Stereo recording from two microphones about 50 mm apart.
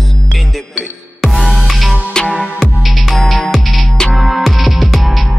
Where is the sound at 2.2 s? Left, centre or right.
Centre.